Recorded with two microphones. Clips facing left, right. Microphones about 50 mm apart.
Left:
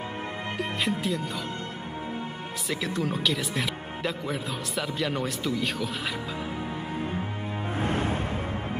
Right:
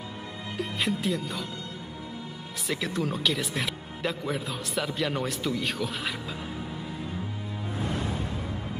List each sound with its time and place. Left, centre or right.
0.6 s speech: centre
2.7 s speech: centre
7.0 s music: left